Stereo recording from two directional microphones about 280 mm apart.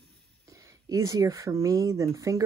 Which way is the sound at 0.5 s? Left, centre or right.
Centre.